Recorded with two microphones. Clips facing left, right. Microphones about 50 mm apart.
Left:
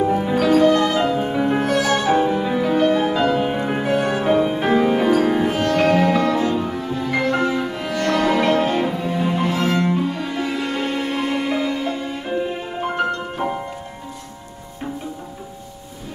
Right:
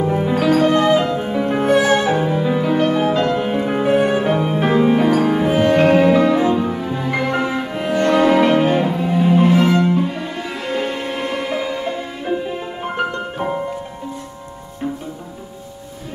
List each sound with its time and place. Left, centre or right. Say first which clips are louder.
0.0 s music: even; centre
0.3 s music: right 2 dB; centre
0.7 s music: right 2 dB; right
1.0 s music: even; centre
1.6 s music: right 5 dB; right
2.0 s music: even; centre
3.8 s music: right 6 dB; centre
4.2 s music: even; centre
5.5 s music: right 4 dB; right
8.8 s cello: right 4 dB; centre
9.8 s music: right 3 dB; centre